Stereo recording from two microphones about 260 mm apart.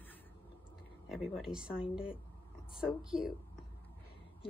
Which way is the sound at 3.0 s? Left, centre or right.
Centre.